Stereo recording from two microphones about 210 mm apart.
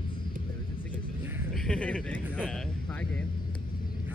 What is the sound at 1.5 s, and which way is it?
Speech, 5° left (ahead or behind).